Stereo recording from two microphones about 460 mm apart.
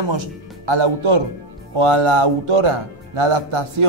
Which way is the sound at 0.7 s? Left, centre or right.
Right.